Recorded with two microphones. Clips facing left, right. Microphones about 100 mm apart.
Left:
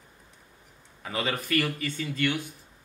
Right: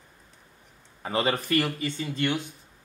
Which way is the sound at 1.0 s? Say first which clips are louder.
Right 4 dB; 35° right (ahead or behind).